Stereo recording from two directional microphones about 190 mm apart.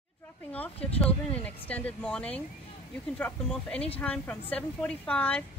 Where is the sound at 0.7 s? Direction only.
30° left (ahead or behind).